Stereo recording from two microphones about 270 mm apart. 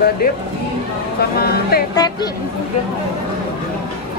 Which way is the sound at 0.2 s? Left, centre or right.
Left.